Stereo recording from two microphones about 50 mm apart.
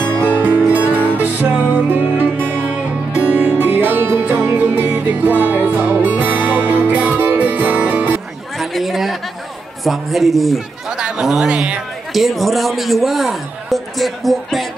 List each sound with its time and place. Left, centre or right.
0.7 s music: right
3.2 s music: right
8.5 s chatter: centre
9.8 s a man's voice: centre
10.9 s chatter: centre
11.1 s a man's voice: centre
11.5 s a man's voice: right
12.1 s a man's voice: centre